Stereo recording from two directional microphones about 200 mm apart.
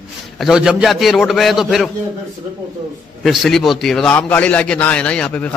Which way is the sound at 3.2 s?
Centre (ahead or behind).